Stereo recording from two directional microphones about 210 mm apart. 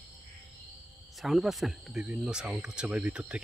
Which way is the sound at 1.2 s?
Centre (ahead or behind).